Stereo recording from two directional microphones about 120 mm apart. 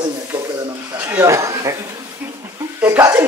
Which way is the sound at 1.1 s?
25° right (ahead or behind).